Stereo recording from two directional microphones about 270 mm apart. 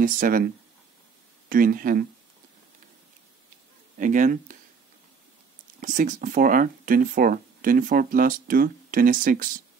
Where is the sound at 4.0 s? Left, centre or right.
Right.